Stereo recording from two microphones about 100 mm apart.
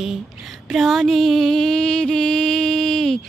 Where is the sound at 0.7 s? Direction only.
Centre (ahead or behind).